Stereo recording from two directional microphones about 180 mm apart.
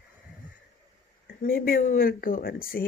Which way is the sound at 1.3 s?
55° left (ahead or behind).